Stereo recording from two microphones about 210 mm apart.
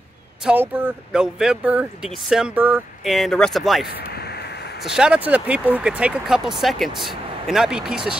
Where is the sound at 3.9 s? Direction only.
50° left (ahead or behind).